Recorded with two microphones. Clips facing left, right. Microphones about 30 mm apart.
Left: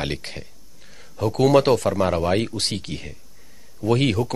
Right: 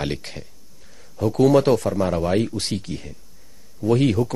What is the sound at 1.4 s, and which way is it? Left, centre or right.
Speech, left.